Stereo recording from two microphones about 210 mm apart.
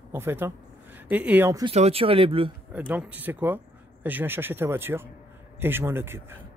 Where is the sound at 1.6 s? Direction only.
30° right (ahead or behind).